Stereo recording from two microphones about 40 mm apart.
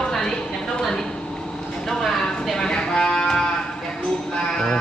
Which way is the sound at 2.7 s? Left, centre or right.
Left.